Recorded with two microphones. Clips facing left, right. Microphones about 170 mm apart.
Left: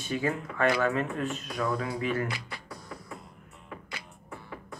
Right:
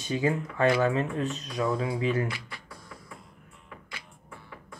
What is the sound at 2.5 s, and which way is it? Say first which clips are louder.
Music: left 4 dB; 40° left (ahead or behind).